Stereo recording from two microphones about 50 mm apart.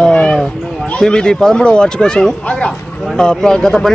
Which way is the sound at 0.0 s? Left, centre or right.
Left.